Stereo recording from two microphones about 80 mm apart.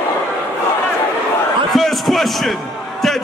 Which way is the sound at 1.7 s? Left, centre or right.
Centre.